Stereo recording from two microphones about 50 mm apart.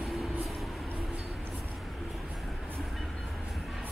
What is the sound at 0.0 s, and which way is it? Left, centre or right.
Vehicle, centre.